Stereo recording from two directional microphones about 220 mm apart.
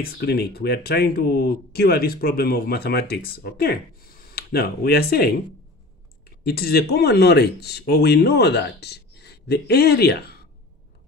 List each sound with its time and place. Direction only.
0.0 s speech: 45° left (ahead or behind)
6.4 s speech: 45° left (ahead or behind)